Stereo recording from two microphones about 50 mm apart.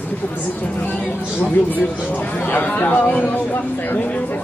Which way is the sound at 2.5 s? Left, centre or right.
Left.